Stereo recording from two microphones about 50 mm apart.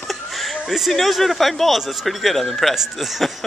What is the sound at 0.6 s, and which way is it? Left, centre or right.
A man's voice, centre.